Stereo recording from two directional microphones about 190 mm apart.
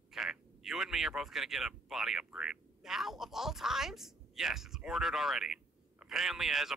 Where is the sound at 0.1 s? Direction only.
Centre (ahead or behind).